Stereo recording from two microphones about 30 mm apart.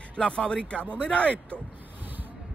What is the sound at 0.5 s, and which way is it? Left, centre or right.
A man's voice, left.